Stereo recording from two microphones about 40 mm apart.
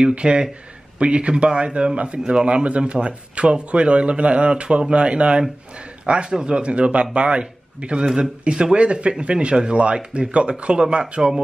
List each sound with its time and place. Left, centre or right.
0.1 s a man's voice: right